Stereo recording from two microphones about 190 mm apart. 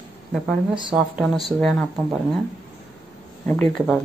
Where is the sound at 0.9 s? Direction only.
Centre (ahead or behind).